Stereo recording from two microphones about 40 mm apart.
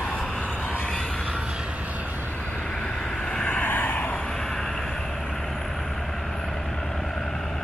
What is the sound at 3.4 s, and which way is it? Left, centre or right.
Vehicle, left.